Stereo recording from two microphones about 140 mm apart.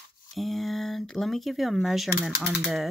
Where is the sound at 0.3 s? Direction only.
Centre (ahead or behind).